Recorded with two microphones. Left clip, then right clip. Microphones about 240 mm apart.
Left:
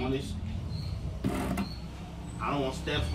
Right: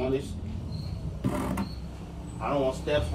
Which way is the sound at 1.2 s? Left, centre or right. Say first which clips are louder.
Right 2 dB; centre.